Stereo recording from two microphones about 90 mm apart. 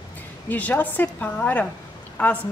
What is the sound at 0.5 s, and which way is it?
A woman's voice, 20° left (ahead or behind).